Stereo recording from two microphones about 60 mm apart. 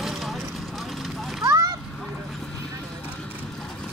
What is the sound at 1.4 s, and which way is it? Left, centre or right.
Splash, right.